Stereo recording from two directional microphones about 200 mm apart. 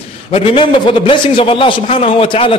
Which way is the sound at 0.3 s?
25° left (ahead or behind).